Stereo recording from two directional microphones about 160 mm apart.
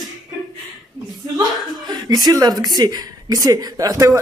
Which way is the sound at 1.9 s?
25° right (ahead or behind).